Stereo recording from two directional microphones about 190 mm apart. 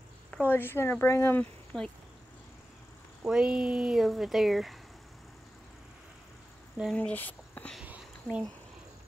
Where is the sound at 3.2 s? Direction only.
5° right (ahead or behind).